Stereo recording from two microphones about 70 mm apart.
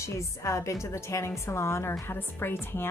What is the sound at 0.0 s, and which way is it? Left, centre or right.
A woman's voice, left.